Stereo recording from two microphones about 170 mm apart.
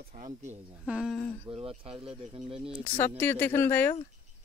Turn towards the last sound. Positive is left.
turn(degrees=15)  # may be behind; listen again after turning